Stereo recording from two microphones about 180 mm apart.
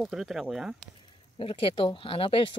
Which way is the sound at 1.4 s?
30° left (ahead or behind).